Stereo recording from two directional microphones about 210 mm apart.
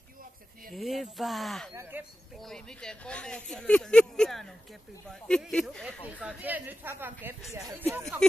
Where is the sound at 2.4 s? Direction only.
Centre (ahead or behind).